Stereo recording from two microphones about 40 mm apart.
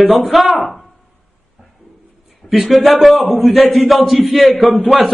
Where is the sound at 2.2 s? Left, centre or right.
Centre.